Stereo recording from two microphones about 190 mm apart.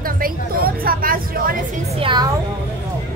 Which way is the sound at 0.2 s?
50° right (ahead or behind).